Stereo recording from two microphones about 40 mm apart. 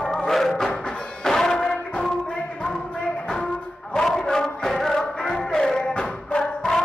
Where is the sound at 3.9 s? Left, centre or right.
Centre.